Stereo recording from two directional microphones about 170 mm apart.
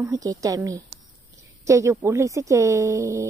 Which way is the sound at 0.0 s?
20° right (ahead or behind).